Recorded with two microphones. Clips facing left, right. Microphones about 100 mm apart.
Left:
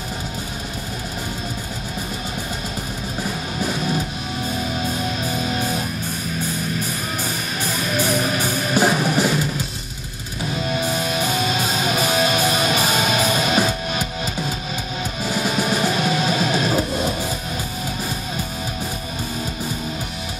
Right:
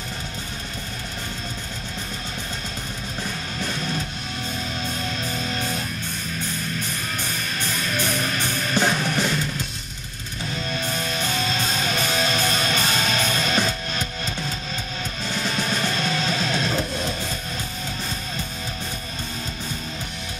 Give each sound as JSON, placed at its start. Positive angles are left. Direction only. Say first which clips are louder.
{"t": 3.5, "sound": "music", "louder": "left 6 dB", "side_deg": 10}
{"t": 7.6, "sound": "music", "louder": "left 5 dB", "side_deg": 10}
{"t": 10.6, "sound": "music", "louder": "left 6 dB", "side_deg": 10}